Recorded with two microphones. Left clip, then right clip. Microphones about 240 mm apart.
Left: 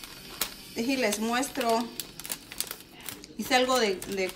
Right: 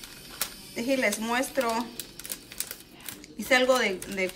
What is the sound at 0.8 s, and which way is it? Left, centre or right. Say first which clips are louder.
Speech: right 1 dB; centre.